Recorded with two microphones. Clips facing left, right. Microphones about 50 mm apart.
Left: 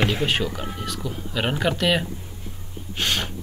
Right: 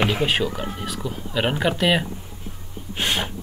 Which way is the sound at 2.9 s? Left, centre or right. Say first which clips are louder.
Right 1 dB; centre.